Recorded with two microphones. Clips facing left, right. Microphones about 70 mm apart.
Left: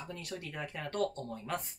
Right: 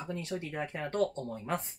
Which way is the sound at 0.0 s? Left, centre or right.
Right.